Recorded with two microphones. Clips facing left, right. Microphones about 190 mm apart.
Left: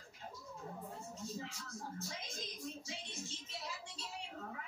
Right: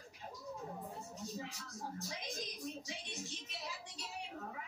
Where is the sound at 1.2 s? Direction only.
15° right (ahead or behind).